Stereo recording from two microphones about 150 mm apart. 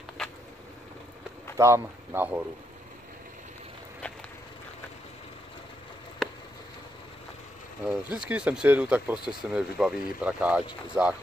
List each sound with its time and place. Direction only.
1.6 s speech: 15° right (ahead or behind)
6.2 s a sound: 5° left (ahead or behind)
7.8 s speech: 5° right (ahead or behind)